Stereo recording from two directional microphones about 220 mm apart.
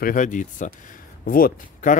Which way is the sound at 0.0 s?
35° left (ahead or behind).